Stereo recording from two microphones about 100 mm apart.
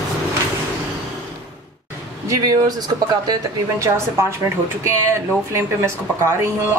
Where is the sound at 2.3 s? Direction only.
35° right (ahead or behind).